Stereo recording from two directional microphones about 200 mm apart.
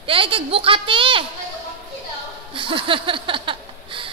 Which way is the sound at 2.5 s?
25° right (ahead or behind).